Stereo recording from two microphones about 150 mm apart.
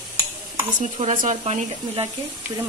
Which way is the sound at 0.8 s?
50° right (ahead or behind).